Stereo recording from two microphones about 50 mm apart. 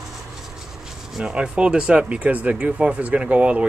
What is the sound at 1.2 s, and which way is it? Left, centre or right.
Speech, right.